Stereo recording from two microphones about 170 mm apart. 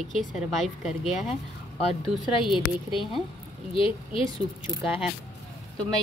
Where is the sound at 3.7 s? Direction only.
30° left (ahead or behind).